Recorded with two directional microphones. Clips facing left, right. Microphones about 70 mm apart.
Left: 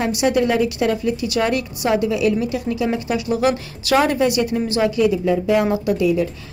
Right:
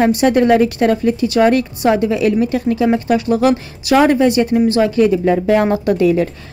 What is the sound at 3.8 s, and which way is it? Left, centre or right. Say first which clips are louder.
A woman's voice: right 5 dB; right.